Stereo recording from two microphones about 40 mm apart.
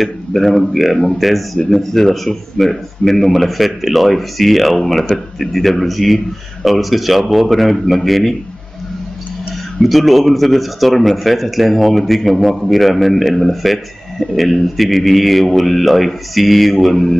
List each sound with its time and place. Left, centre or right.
0.0 s a man's voice: centre
9.8 s a man's voice: centre
16.7 s mantra: centre